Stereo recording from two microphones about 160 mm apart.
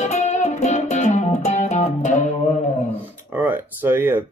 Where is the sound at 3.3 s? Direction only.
10° right (ahead or behind).